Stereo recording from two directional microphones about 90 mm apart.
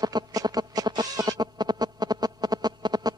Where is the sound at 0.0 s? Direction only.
45° right (ahead or behind).